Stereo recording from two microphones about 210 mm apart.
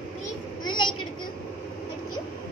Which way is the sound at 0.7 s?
20° left (ahead or behind).